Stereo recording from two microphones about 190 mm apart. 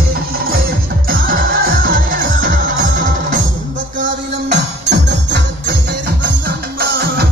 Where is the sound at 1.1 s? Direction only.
50° right (ahead or behind).